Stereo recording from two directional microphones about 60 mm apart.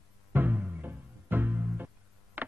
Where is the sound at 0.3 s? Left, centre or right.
Right.